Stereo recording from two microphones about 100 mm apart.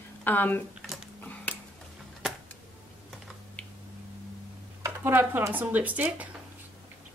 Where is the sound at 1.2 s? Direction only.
15° left (ahead or behind).